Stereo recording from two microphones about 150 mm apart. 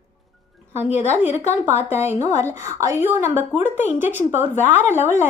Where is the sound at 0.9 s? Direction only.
50° left (ahead or behind).